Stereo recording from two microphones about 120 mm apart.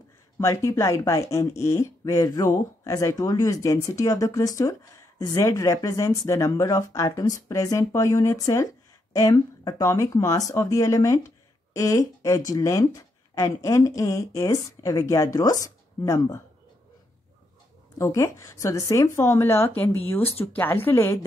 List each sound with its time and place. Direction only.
0.4 s speech: 25° left (ahead or behind)
17.9 s speech: 25° left (ahead or behind)